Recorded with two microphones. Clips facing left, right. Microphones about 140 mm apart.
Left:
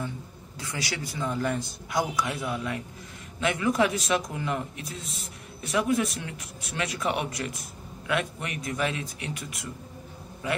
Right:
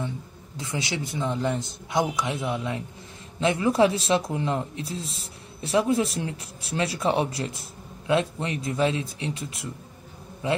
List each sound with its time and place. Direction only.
0.6 s speech: 25° right (ahead or behind)